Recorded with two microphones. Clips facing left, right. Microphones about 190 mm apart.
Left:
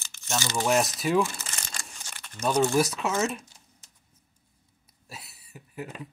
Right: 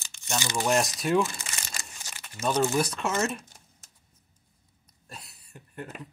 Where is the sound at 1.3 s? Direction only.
10° right (ahead or behind).